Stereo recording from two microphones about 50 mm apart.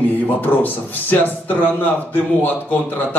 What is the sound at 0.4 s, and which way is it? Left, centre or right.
A man's voice, left.